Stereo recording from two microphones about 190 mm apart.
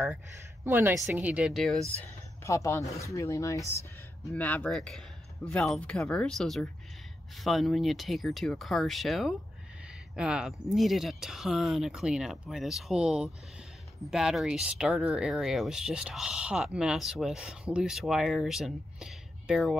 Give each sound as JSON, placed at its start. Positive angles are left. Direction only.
{"t": 0.7, "sound": "a woman's voice", "side_deg": -10}
{"t": 2.0, "sound": "speech", "side_deg": 15}